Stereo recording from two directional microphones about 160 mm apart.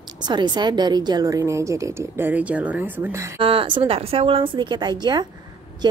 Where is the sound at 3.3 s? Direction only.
35° right (ahead or behind).